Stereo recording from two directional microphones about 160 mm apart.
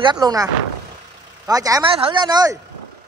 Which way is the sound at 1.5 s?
20° right (ahead or behind).